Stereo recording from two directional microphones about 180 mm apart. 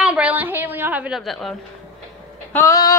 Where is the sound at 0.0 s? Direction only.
5° right (ahead or behind).